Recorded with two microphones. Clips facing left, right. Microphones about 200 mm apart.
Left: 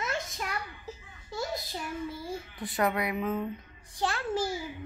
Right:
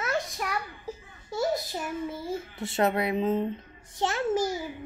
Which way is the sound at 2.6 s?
25° right (ahead or behind).